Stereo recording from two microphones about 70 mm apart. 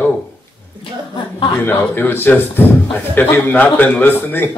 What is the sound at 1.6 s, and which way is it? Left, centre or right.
Speech, left.